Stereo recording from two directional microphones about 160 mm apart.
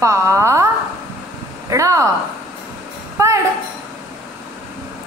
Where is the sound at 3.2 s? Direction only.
20° right (ahead or behind).